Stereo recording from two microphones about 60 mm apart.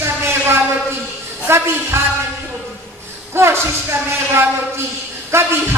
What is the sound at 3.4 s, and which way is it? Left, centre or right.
Speech, right.